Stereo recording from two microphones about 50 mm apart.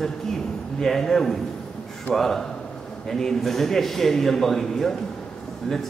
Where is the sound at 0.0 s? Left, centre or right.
Centre.